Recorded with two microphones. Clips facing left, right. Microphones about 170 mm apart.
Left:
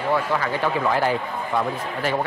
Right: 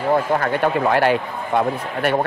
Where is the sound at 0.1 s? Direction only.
45° right (ahead or behind).